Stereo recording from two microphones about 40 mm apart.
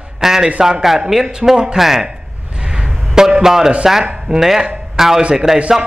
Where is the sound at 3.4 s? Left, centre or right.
Centre.